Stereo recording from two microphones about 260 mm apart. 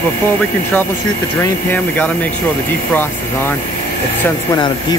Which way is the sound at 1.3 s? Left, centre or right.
Centre.